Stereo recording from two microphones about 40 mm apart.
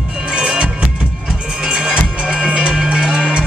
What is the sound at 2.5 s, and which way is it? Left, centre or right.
Cowbell, right.